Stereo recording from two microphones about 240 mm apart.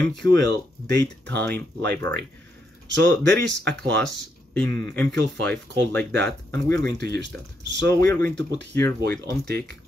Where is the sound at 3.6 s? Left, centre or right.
Right.